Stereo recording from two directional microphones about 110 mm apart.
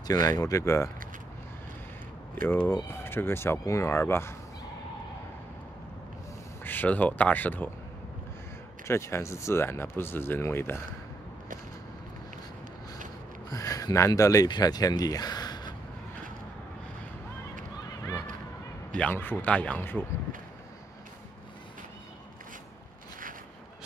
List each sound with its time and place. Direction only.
0.0 s speech: 35° left (ahead or behind)
2.4 s speech: 20° left (ahead or behind)
6.6 s speech: 15° left (ahead or behind)
8.8 s speech: 25° left (ahead or behind)
13.5 s speech: 30° left (ahead or behind)
18.9 s speech: 15° left (ahead or behind)